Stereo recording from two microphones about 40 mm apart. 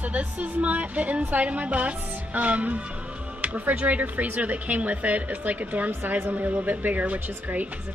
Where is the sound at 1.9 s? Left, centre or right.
Right.